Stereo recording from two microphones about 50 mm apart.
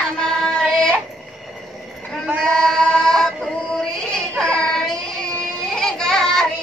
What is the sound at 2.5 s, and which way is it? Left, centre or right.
Child singing, centre.